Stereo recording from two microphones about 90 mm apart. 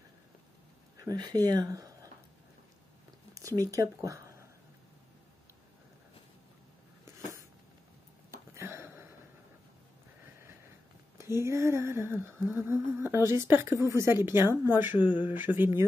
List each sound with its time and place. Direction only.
1.0 s speech: 50° right (ahead or behind)
3.3 s speech: 40° right (ahead or behind)
8.5 s a sound: 30° right (ahead or behind)
11.1 s humming: 30° right (ahead or behind)